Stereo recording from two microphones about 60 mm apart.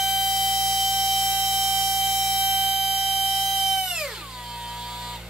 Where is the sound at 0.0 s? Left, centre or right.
Centre.